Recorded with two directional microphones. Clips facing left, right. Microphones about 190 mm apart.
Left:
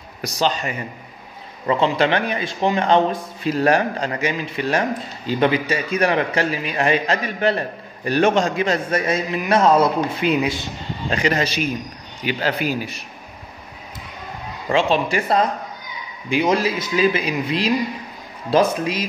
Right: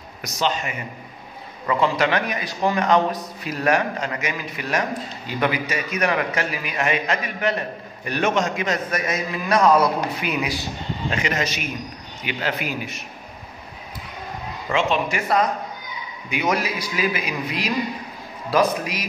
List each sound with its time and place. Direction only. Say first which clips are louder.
0.2 s a man's voice: left 3 dB; 35° left (ahead or behind)
14.7 s a man's voice: left 3 dB; 30° left (ahead or behind)